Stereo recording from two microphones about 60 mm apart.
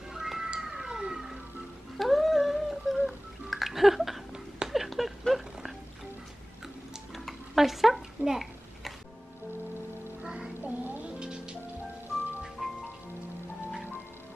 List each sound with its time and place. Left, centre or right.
0.1 s cat: centre
2.0 s a sound: centre
3.4 s music: centre
4.6 s a sound: centre
7.2 s babbling: centre
10.2 s music: centre
10.6 s music: right
11.1 s music: centre
12.6 s music: centre